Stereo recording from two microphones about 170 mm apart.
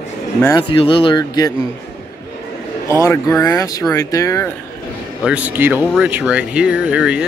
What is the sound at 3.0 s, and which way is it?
Speech, 15° left (ahead or behind).